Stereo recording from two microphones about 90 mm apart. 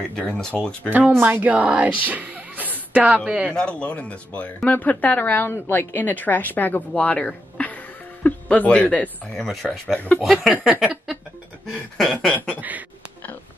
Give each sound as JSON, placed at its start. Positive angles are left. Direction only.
{"t": 0.2, "sound": "speech", "side_deg": 15}
{"t": 0.8, "sound": "speech", "side_deg": -20}
{"t": 3.4, "sound": "speech", "side_deg": 10}
{"t": 9.4, "sound": "speech", "side_deg": 5}
{"t": 9.9, "sound": "speech", "side_deg": 20}
{"t": 10.2, "sound": "speech", "side_deg": 0}
{"t": 12.3, "sound": "speech", "side_deg": 15}
{"t": 12.5, "sound": "speech", "side_deg": -20}